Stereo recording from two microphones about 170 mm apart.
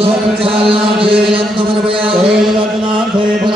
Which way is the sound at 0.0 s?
35° right (ahead or behind).